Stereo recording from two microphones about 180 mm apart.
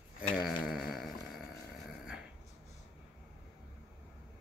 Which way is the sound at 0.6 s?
Centre (ahead or behind).